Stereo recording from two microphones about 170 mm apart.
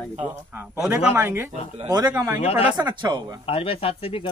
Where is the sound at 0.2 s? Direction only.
10° right (ahead or behind); by 3.3 s 25° right (ahead or behind).